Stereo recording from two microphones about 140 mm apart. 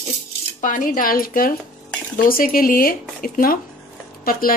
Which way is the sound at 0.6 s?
75° left (ahead or behind).